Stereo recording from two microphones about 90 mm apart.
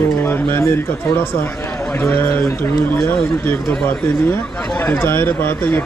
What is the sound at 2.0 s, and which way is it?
Speech, 25° left (ahead or behind).